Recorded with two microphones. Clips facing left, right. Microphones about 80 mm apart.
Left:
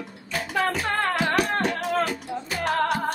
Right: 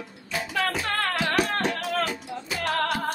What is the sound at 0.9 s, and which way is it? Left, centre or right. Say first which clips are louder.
Music: left 2 dB; centre.